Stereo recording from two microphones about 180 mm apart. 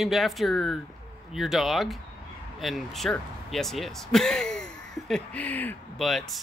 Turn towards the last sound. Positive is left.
turn(degrees=0)  # may be behind; listen again after turning